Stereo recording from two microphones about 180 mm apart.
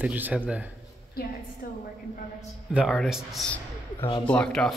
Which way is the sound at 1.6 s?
60° left (ahead or behind).